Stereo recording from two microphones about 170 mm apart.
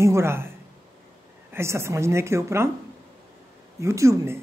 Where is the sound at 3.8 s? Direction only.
15° right (ahead or behind).